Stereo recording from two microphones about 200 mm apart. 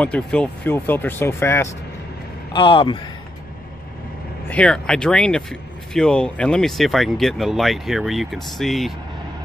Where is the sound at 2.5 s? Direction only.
25° left (ahead or behind).